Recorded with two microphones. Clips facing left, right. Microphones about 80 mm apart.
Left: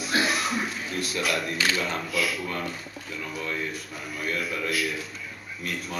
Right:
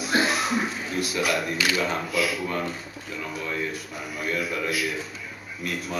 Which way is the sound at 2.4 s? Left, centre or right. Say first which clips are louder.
Right 3 dB; centre.